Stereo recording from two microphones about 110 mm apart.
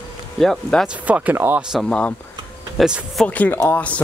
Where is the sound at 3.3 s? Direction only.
15° left (ahead or behind).